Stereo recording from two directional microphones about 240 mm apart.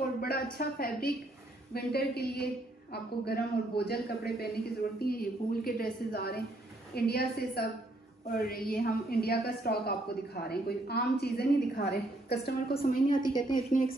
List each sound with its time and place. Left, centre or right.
0.2 s a woman's voice: left
13.2 s a woman's voice: centre
13.5 s a woman's voice: left